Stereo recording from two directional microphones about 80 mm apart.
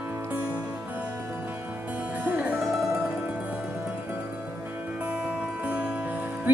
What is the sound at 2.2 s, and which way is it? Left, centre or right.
Music, right.